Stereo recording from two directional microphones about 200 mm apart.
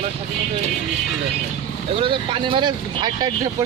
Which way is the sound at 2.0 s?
25° right (ahead or behind).